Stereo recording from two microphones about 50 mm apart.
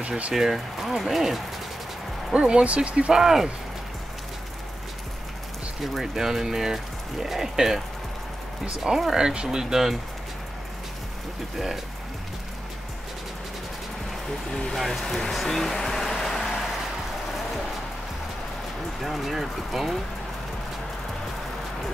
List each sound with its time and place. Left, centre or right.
0.3 s speech: centre
2.3 s speech: right
3.2 s speech: centre
6.1 s speech: centre
8.8 s speech: centre
11.5 s speech: centre
14.5 s speech: centre
18.9 s speech: centre